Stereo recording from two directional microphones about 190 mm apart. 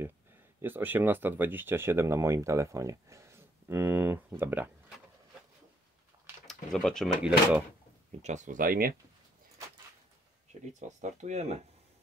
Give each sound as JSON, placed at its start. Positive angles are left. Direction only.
{"t": 0.6, "sound": "speech", "side_deg": -10}
{"t": 6.4, "sound": "speech", "side_deg": 5}
{"t": 8.2, "sound": "speech", "side_deg": -40}
{"t": 10.6, "sound": "speech", "side_deg": -40}